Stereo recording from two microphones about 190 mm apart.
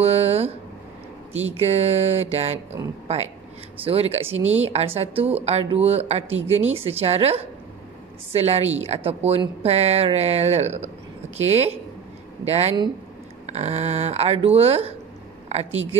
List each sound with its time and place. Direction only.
0.0 s a sound: 35° right (ahead or behind)
1.6 s speech: 35° right (ahead or behind)
3.8 s speech: 30° right (ahead or behind)
4.4 s speech: 85° right
4.6 s speech: 30° right (ahead or behind)